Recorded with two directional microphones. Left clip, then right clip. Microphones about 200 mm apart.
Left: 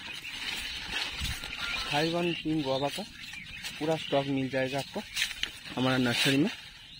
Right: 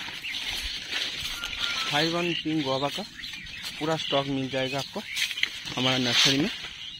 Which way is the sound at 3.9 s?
5° right (ahead or behind).